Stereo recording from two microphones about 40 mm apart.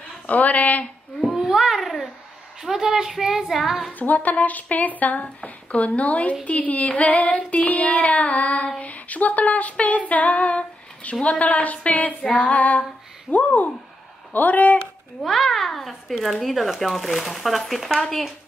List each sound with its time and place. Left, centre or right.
0.3 s child singing: left
1.5 s a sound: centre
2.6 s speech: centre
4.0 s child singing: left
8.8 s child singing: left
12.3 s female singing: left
12.5 s child singing: left
14.3 s speech: left
15.2 s speech: centre
17.9 s speech: centre